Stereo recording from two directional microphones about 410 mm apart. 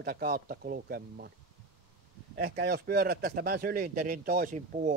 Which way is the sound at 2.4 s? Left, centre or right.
Right.